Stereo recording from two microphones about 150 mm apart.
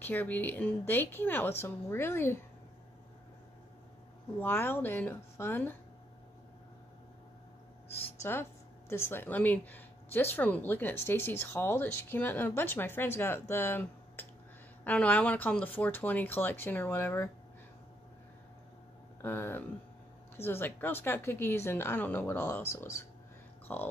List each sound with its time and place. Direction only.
0.0 s speech: 10° left (ahead or behind)
4.4 s speech: 15° left (ahead or behind)
8.0 s speech: 15° left (ahead or behind)
19.2 s speech: 15° left (ahead or behind)